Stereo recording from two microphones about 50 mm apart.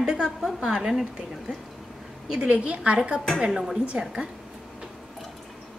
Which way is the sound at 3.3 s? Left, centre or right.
Centre.